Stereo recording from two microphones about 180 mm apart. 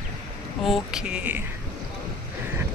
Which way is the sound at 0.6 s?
Centre (ahead or behind).